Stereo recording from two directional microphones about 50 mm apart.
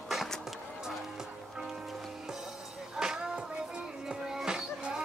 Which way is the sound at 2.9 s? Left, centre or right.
Centre.